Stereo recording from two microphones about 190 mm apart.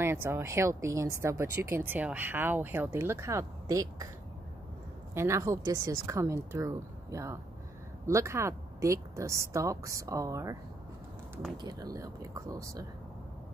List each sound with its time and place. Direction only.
0.0 s speech: 10° right (ahead or behind)
5.1 s speech: 15° right (ahead or behind)